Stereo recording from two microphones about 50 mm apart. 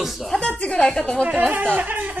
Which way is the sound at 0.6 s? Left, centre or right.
Left.